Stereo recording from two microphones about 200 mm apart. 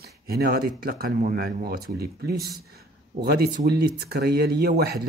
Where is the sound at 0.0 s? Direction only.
50° right (ahead or behind).